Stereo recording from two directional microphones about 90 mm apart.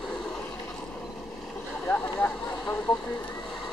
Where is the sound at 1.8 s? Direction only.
15° left (ahead or behind).